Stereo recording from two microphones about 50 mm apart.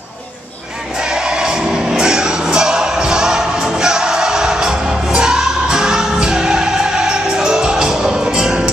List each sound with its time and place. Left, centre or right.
1.0 s music: centre